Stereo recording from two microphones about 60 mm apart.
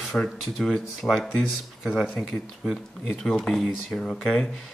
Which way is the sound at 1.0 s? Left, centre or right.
Left.